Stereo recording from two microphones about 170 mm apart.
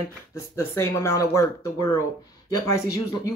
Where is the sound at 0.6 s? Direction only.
15° left (ahead or behind).